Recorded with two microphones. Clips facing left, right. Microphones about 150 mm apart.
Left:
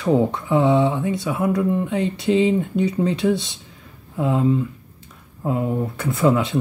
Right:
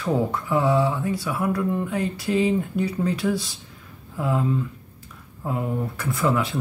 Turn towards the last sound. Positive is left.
turn(degrees=25)  # may be behind; listen again after turning